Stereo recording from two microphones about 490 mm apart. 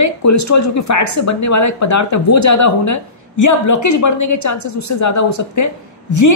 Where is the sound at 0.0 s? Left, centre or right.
Left.